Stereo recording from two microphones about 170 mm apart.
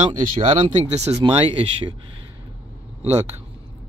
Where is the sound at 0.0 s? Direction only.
35° right (ahead or behind).